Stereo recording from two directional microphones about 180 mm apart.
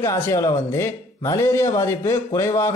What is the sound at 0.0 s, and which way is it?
A man's voice, 15° left (ahead or behind).